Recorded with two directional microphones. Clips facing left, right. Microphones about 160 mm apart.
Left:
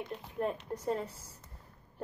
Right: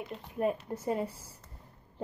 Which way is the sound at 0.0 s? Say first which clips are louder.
Right 3 dB; 5° right (ahead or behind).